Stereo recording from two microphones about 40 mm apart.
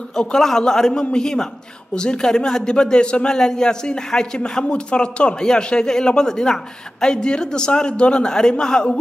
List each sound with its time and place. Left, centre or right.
0.1 s a man's voice: centre